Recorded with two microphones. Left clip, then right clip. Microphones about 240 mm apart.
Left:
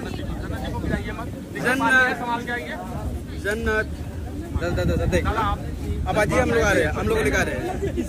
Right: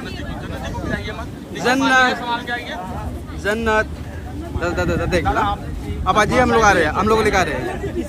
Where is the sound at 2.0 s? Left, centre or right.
Centre.